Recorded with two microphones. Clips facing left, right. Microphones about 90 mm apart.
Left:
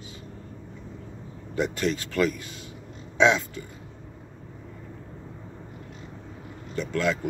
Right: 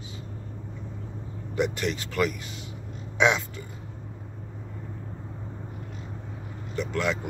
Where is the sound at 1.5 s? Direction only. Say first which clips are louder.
Left 1 dB; 15° right (ahead or behind).